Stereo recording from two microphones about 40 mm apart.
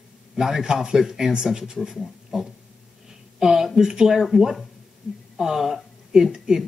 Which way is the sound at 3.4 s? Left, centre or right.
Centre.